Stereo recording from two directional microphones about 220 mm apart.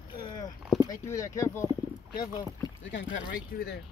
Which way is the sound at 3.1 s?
45° left (ahead or behind).